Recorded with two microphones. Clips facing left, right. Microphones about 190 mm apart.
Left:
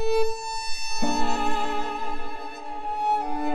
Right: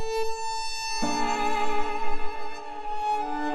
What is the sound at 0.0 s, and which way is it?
Violin, 65° left (ahead or behind).